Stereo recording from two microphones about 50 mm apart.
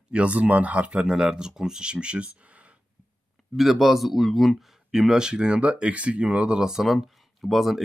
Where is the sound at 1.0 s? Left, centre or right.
Centre.